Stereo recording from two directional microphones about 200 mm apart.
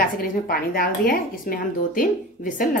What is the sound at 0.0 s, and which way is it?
Speech, 45° left (ahead or behind).